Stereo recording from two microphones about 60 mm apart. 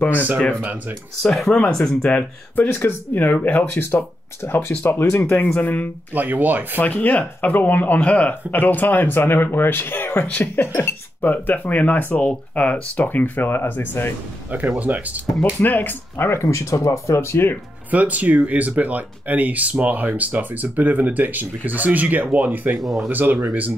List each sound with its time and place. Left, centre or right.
0.0 s speech: left
0.6 s speech: right
1.2 s speech: centre
2.1 s speech: left
4.4 s speech: left
5.5 s speech: left
6.1 s speech: right
6.8 s speech: left
11.2 s speech: left
14.8 s speech: right
15.6 s speech: left
17.9 s speech: right
22.8 s speech: centre
23.1 s speech: right